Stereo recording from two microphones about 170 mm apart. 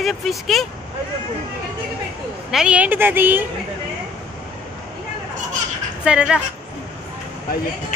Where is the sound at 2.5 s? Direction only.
5° right (ahead or behind).